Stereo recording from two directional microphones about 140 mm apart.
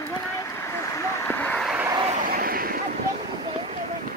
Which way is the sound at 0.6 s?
20° left (ahead or behind).